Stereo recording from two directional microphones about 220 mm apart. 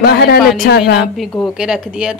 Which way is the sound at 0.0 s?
45° left (ahead or behind).